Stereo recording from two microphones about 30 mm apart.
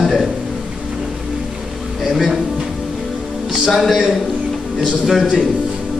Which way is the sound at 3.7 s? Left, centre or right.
Centre.